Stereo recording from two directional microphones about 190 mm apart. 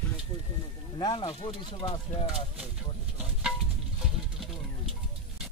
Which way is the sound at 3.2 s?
5° right (ahead or behind).